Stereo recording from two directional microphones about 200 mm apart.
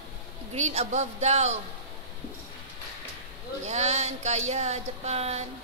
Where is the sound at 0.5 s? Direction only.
35° right (ahead or behind).